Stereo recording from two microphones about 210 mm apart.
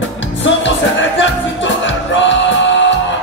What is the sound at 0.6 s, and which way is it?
Music, 60° left (ahead or behind).